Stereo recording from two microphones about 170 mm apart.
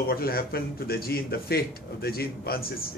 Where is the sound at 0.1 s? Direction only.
65° left (ahead or behind).